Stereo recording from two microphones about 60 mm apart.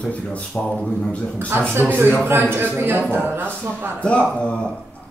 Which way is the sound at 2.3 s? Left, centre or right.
Right.